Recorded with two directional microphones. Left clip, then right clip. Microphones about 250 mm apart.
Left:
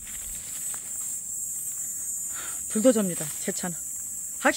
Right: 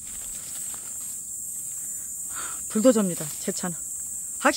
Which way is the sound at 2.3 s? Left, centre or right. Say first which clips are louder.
Right 4 dB; centre.